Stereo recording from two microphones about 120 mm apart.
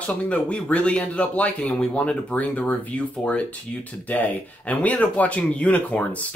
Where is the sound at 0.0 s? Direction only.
10° left (ahead or behind).